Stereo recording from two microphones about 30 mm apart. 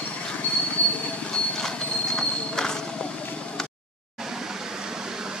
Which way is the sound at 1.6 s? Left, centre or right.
Centre.